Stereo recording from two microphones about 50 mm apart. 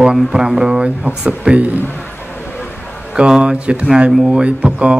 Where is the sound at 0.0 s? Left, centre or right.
Centre.